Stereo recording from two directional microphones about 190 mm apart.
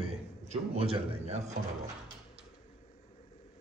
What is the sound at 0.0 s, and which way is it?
A man's voice, 30° right (ahead or behind).